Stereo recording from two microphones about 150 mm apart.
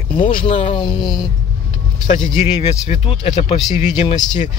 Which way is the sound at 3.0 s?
40° left (ahead or behind).